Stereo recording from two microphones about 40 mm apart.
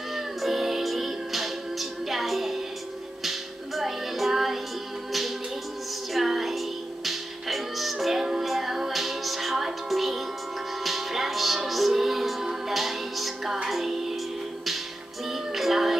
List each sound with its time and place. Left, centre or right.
0.1 s music: centre
6.1 s music: centre
15.5 s music: centre